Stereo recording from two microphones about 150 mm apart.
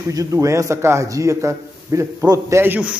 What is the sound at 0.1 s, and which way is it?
A man's voice, 20° right (ahead or behind).